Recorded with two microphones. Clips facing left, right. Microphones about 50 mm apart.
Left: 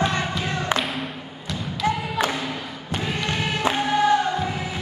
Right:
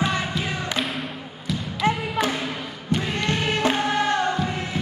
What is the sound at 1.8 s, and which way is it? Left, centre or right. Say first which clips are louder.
Thump: right 1 dB; right.